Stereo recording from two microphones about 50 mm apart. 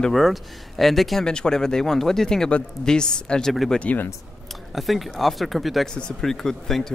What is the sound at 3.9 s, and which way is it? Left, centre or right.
Speech, left.